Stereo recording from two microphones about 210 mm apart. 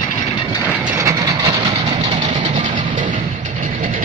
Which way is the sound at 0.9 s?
15° right (ahead or behind).